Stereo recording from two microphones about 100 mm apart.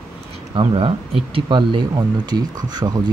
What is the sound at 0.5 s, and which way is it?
Speech, 65° right (ahead or behind).